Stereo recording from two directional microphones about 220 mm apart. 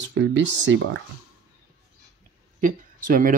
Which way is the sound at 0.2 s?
55° right (ahead or behind).